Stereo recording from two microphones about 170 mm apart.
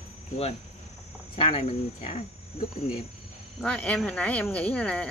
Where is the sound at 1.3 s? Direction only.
35° left (ahead or behind).